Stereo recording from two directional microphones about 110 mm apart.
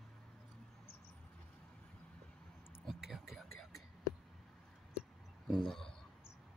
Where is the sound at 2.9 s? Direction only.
Centre (ahead or behind).